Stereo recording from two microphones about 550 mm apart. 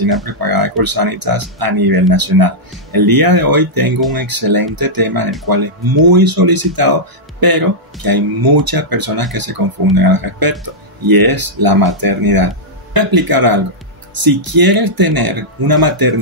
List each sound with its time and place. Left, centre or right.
0.5 s speech: right